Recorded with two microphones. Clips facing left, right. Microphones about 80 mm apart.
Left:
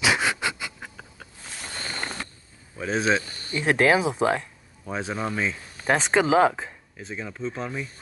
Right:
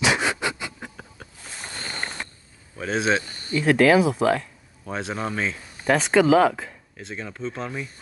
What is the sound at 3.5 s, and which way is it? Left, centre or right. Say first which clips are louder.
Speech: right 3 dB; left.